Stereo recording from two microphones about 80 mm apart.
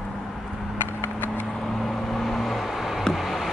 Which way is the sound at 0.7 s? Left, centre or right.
Left.